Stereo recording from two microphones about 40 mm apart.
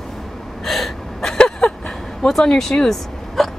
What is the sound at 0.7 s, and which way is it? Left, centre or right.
Gasp, centre.